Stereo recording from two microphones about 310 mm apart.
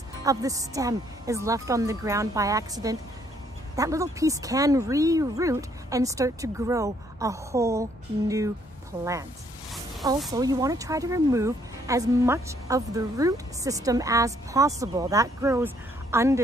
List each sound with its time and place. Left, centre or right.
0.2 s speech: centre
10.3 s speech: centre